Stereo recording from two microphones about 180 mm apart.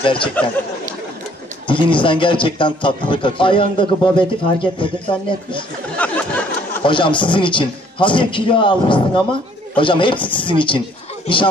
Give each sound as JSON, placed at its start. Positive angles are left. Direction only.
{"t": 0.0, "sound": "a man's voice", "side_deg": 30}
{"t": 1.7, "sound": "a man's voice", "side_deg": 25}
{"t": 6.0, "sound": "speech", "side_deg": 10}
{"t": 6.8, "sound": "a man's voice", "side_deg": 25}